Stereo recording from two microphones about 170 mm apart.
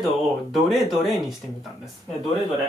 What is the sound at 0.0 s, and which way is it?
Speech, centre (ahead or behind).